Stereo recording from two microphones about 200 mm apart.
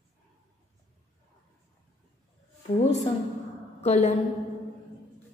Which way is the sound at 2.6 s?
35° left (ahead or behind).